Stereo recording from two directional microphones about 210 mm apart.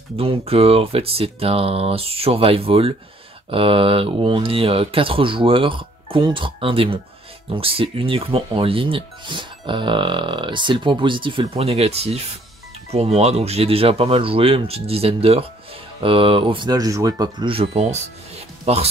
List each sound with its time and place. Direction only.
0.1 s speech: 25° right (ahead or behind)